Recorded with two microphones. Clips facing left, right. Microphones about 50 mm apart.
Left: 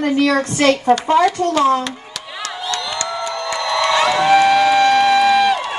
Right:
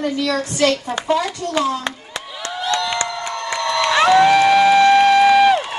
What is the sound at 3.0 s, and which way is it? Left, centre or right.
Crowd, right.